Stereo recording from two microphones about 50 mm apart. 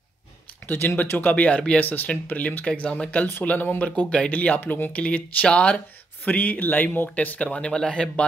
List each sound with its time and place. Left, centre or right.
0.7 s speech: left
3.4 s speech: left
3.8 s speech: left
4.6 s speech: left
4.9 s speech: left
7.2 s speech: left